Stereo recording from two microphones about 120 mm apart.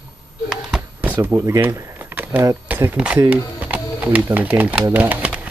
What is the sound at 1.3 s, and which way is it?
Speech, 20° right (ahead or behind).